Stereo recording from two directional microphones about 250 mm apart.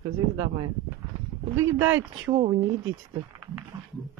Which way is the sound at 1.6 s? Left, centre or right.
Centre.